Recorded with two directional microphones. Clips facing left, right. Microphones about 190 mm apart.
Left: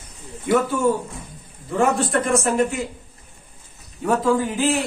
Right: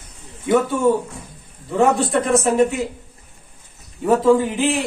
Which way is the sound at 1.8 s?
Centre (ahead or behind).